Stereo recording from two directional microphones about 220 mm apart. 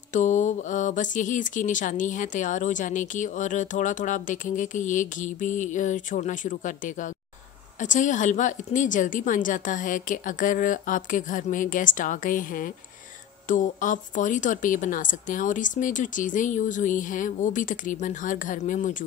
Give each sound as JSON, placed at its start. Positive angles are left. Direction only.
{"t": 0.1, "sound": "speech", "side_deg": 35}